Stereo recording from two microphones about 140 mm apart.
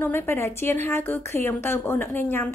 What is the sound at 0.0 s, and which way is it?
A woman's voice, 15° left (ahead or behind).